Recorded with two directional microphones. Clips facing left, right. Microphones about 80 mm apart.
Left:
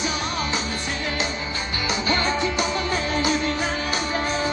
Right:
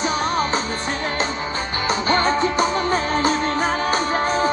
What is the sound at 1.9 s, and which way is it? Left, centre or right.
Music, right.